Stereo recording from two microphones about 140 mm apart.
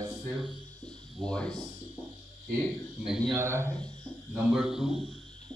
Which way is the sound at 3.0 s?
5° right (ahead or behind).